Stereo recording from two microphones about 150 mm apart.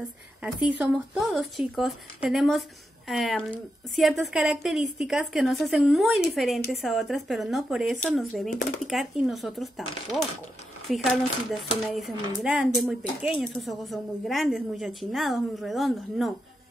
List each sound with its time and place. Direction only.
0.4 s speech: 10° right (ahead or behind)
8.5 s speech: 65° left (ahead or behind)
8.8 s speech: centre (ahead or behind)